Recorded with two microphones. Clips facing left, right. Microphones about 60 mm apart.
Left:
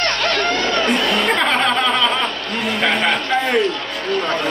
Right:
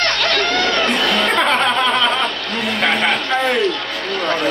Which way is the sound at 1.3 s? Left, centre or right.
Centre.